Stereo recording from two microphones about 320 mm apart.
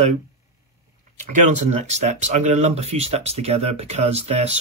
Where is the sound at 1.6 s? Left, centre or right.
Right.